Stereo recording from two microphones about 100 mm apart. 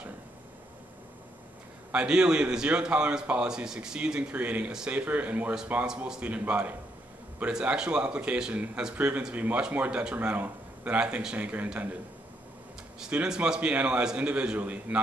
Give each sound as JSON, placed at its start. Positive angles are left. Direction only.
{"t": 1.9, "sound": "a man's voice", "side_deg": -10}
{"t": 13.0, "sound": "a man's voice", "side_deg": -10}